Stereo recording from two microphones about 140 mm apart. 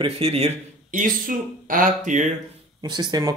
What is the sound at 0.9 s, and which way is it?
Speech, 75° right (ahead or behind).